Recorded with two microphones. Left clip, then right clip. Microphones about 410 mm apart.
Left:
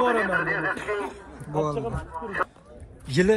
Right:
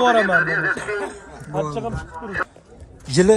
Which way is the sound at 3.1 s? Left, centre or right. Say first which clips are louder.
Right 6 dB; centre.